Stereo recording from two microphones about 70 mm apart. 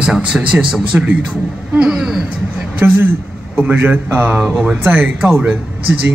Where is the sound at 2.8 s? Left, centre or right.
Right.